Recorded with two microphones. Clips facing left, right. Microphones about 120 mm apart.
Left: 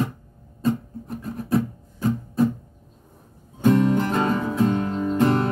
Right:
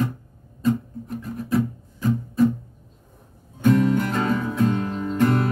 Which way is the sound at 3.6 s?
30° left (ahead or behind).